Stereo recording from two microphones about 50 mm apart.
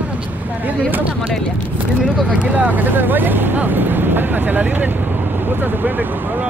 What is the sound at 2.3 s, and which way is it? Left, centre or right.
Speech, right.